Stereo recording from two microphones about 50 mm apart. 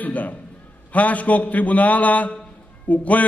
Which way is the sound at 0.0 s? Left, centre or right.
Left.